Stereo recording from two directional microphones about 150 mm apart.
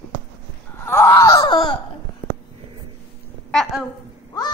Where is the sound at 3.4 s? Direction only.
5° left (ahead or behind).